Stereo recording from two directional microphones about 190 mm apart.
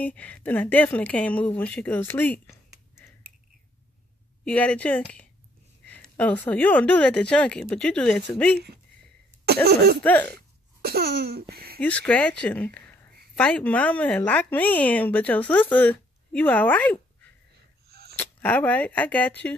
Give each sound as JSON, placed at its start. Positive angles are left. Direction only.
{"t": 0.0, "sound": "speech", "side_deg": 5}
{"t": 4.5, "sound": "speech", "side_deg": 5}
{"t": 9.5, "sound": "cough", "side_deg": -55}
{"t": 10.0, "sound": "speech", "side_deg": 10}
{"t": 10.8, "sound": "speech", "side_deg": -55}
{"t": 11.8, "sound": "speech", "side_deg": 5}
{"t": 17.8, "sound": "a sound", "side_deg": -55}
{"t": 18.1, "sound": "speech", "side_deg": 10}